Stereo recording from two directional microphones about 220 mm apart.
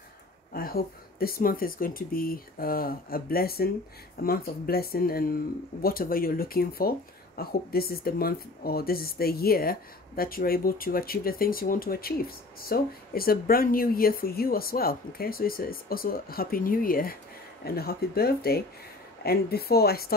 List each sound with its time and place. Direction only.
0.5 s speech: 40° left (ahead or behind)